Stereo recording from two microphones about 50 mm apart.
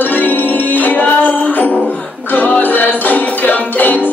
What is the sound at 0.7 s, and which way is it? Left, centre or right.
Music, left.